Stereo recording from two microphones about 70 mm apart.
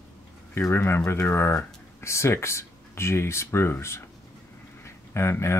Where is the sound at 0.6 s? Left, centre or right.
Left.